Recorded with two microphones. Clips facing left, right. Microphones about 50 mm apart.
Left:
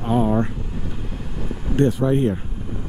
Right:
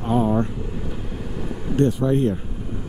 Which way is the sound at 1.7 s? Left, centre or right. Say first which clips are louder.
Left 1 dB; left.